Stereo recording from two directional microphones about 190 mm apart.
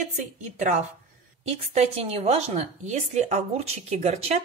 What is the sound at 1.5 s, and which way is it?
A woman's voice, 35° right (ahead or behind).